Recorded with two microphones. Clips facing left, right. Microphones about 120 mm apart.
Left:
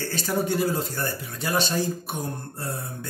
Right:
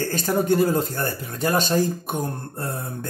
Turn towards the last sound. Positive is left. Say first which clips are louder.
# right 4 dB
turn(degrees=-45)  # may be behind; listen again after turning